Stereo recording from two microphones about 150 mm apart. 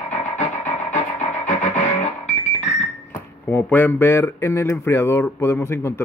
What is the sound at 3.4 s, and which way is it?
Speech, 15° left (ahead or behind).